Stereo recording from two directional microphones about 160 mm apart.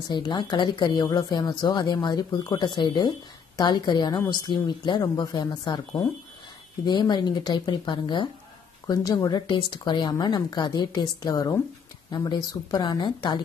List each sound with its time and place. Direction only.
0.1 s a woman's voice: 30° left (ahead or behind)